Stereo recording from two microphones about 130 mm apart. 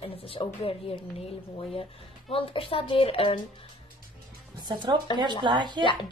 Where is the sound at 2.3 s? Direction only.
45° left (ahead or behind).